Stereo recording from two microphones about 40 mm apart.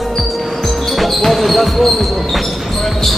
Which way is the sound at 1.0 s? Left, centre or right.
Centre.